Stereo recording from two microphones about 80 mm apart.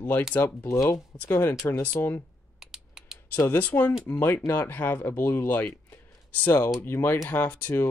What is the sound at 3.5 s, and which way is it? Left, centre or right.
Speech, left.